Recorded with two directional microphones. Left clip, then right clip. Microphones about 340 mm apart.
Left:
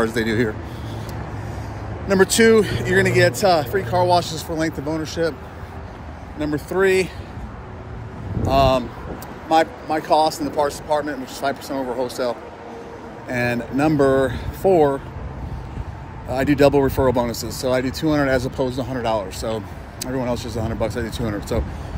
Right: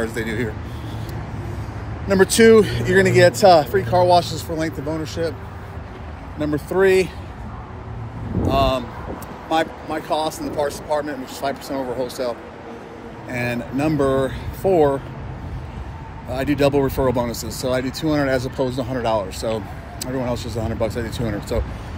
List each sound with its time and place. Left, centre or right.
0.0 s speech: centre
2.0 s speech: centre
6.4 s speech: centre
8.5 s speech: centre
16.3 s speech: centre